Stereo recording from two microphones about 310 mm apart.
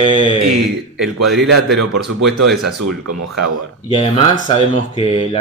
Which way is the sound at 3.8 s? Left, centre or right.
Centre.